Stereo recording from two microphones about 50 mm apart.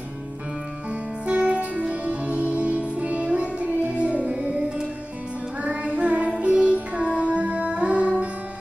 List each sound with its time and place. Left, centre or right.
1.2 s music: right
5.9 s child singing: right
6.4 s music: right